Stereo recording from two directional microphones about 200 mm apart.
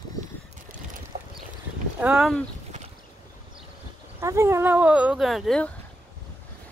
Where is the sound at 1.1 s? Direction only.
40° right (ahead or behind).